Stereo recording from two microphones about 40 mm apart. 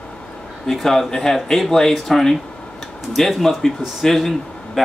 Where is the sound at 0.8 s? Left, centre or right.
Centre.